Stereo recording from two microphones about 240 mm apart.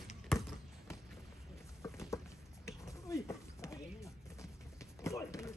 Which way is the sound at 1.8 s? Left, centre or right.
Centre.